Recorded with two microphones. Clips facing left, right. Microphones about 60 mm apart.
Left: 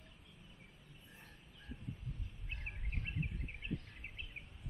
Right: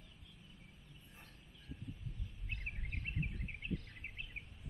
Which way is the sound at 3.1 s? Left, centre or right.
Centre.